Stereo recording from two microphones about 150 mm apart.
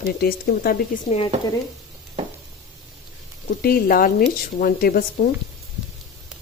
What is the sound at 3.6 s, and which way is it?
Speech, 70° left (ahead or behind).